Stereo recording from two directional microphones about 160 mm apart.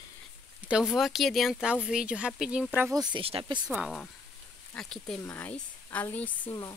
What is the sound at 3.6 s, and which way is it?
Speech, 5° right (ahead or behind).